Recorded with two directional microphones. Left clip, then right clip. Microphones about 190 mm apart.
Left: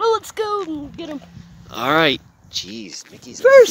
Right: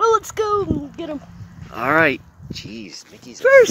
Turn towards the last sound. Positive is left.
turn(degrees=65)  # may be behind; listen again after turning